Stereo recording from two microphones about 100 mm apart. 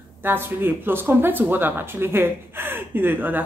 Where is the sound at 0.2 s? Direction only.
20° right (ahead or behind).